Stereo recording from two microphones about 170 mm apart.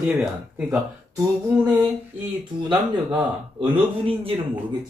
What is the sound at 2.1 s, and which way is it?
Speech, 10° right (ahead or behind).